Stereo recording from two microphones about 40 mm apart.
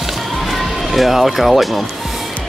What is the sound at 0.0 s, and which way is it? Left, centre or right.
Music, centre.